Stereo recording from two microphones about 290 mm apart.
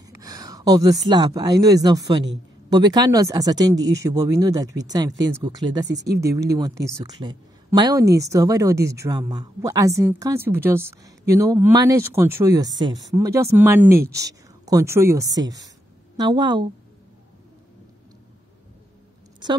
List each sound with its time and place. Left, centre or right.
0.0 s a sound: centre
1.0 s a woman's voice: centre
5.9 s speech: right
6.2 s a woman's voice: centre
19.4 s a woman's voice: centre